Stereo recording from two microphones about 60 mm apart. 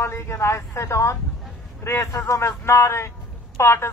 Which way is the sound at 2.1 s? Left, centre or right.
Left.